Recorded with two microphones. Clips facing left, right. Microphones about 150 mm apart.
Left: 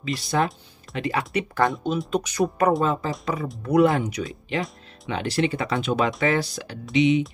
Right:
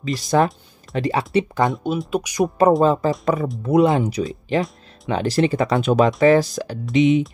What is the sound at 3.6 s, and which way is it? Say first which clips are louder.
Speech: right 2 dB; 20° right (ahead or behind).